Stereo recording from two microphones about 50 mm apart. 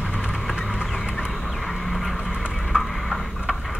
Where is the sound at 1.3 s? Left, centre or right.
Centre.